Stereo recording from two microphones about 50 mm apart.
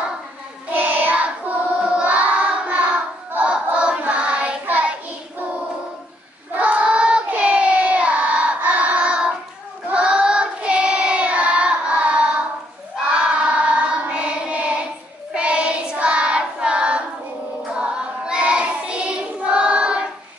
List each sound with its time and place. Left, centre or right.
0.7 s child singing: right
1.1 s child singing: right
6.5 s child singing: right